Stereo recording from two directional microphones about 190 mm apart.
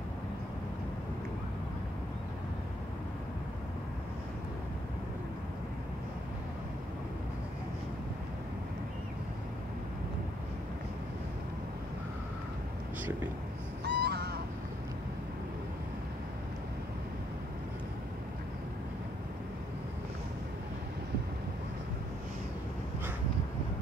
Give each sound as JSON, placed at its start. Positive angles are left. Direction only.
{"t": 13.8, "sound": "crow", "side_deg": -60}